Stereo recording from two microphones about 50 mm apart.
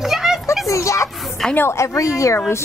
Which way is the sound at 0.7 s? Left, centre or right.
Left.